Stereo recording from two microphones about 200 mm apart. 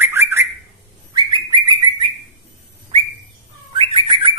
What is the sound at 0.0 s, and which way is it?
Bird, 10° right (ahead or behind).